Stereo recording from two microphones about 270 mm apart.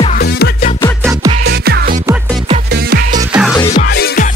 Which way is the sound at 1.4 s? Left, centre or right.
Right.